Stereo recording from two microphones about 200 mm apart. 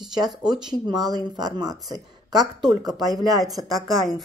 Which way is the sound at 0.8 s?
20° right (ahead or behind).